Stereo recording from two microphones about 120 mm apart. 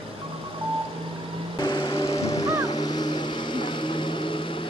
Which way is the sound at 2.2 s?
30° left (ahead or behind).